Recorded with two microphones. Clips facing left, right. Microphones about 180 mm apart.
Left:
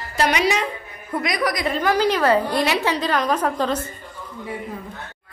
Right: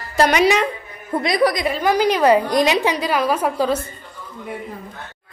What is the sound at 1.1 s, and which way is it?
Speech, 30° right (ahead or behind).